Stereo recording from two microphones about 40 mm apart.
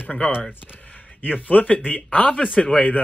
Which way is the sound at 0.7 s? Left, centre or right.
Left.